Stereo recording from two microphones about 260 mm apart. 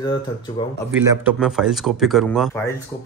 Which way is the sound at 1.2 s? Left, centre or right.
Centre.